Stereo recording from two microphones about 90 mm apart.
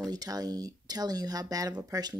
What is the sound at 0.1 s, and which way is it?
Speech, 45° right (ahead or behind).